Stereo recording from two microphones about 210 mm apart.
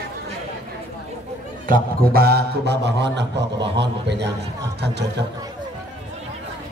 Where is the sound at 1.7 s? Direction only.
45° right (ahead or behind).